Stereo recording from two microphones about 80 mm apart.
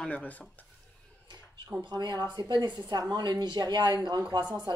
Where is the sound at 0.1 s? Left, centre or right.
Centre.